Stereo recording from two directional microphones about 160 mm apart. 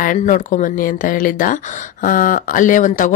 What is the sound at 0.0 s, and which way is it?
Speech, 55° left (ahead or behind).